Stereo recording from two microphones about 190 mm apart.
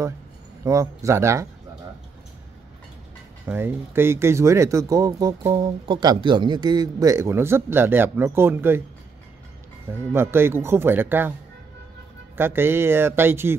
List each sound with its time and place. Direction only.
0.7 s speech: 15° right (ahead or behind)
3.4 s speech: 10° right (ahead or behind)
9.8 s speech: 10° right (ahead or behind)
12.4 s speech: 10° right (ahead or behind)